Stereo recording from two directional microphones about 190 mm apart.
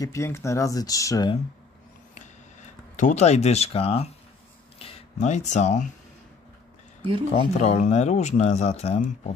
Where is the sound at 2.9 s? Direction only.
40° left (ahead or behind).